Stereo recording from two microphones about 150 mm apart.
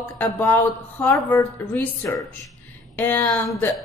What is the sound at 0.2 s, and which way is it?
A woman's voice, 15° left (ahead or behind).